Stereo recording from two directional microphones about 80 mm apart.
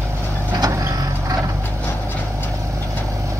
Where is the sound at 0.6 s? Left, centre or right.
Right.